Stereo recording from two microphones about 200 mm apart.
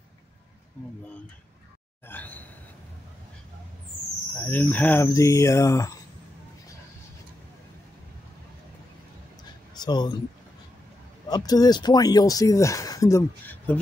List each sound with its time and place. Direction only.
2.0 s a sound: 10° left (ahead or behind)
4.4 s speech: 10° left (ahead or behind)
9.8 s speech: 20° left (ahead or behind)
11.2 s speech: 20° left (ahead or behind)